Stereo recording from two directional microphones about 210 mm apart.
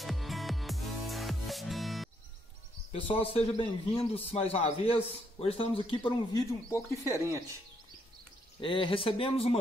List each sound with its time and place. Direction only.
0.0 s music: centre (ahead or behind)
2.9 s a man's voice: 25° left (ahead or behind)
7.2 s speech: 15° right (ahead or behind)
8.5 s a man's voice: 25° left (ahead or behind)